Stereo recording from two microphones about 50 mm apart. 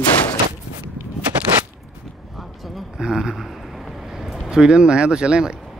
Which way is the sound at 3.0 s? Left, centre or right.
Centre.